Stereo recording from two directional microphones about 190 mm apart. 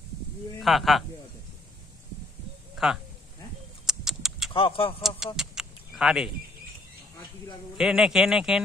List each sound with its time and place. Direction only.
0.6 s speech: centre (ahead or behind)
2.8 s speech: 5° right (ahead or behind)
3.8 s a sound: centre (ahead or behind)
4.6 s speech: 30° left (ahead or behind)
5.0 s speech: centre (ahead or behind)
7.7 s speech: 5° right (ahead or behind)